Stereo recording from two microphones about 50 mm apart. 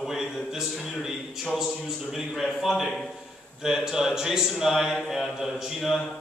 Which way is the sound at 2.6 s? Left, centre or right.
Centre.